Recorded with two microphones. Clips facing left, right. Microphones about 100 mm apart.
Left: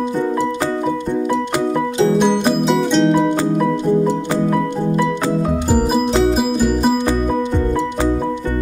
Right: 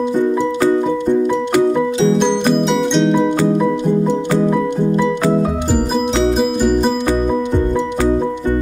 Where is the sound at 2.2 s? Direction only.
5° left (ahead or behind).